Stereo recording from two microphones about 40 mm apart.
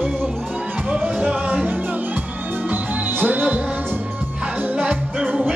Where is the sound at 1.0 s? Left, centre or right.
Right.